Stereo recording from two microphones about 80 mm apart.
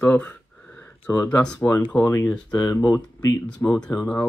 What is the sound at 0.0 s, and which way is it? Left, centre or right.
Speech, left.